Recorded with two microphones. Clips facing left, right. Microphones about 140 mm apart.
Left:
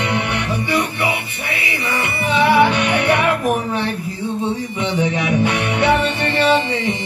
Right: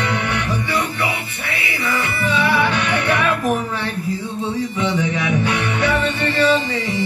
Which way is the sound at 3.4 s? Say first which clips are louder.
Left 1 dB; 20° left (ahead or behind).